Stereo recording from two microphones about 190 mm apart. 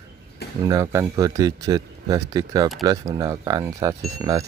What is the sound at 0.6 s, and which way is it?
Speech, 20° right (ahead or behind).